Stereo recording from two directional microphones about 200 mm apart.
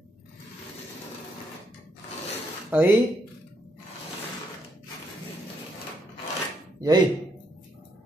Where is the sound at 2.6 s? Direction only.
10° right (ahead or behind).